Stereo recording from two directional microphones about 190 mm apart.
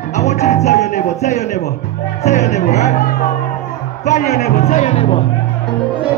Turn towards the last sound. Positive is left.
turn(degrees=35)  # may be behind; listen again after turning